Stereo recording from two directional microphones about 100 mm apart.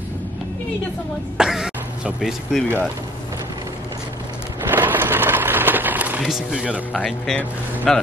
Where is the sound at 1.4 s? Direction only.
5° right (ahead or behind).